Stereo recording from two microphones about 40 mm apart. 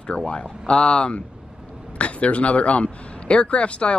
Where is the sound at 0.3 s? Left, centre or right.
Left.